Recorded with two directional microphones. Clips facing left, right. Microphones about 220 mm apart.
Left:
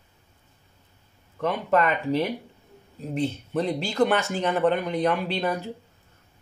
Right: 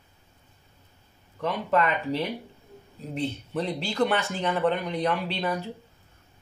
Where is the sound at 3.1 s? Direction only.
45° left (ahead or behind).